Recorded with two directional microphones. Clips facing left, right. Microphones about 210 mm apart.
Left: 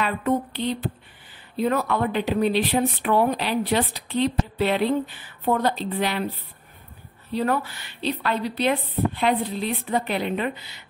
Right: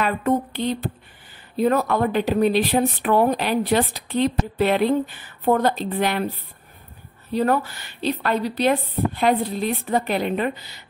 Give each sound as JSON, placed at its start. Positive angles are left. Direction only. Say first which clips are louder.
{"t": 0.0, "sound": "speech", "louder": "right 2 dB", "side_deg": -45}
{"t": 7.3, "sound": "speech", "louder": "right 3 dB", "side_deg": -45}